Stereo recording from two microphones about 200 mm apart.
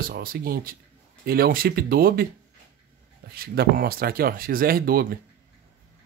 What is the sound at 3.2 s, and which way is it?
Speech, 50° right (ahead or behind).